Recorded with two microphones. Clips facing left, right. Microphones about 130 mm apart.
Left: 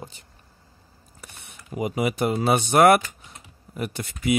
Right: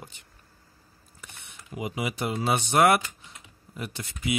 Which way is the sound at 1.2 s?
45° left (ahead or behind).